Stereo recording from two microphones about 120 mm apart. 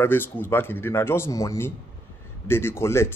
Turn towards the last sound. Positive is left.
turn(degrees=20)  # may be behind; listen again after turning